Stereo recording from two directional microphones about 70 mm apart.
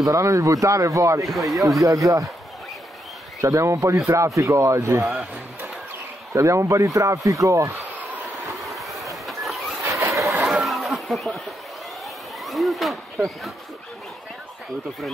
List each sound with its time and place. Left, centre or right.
0.0 s speech: right
1.2 s speech: centre
1.9 s speech: right
3.3 s speech: right
5.0 s speech: centre
6.3 s speech: right
8.5 s vehicle: centre
9.8 s vehicle: right
10.1 s vehicle: right
10.4 s a sound: centre
12.4 s speech: centre